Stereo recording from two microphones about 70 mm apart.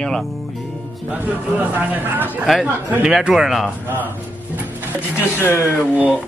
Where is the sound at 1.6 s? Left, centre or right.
Right.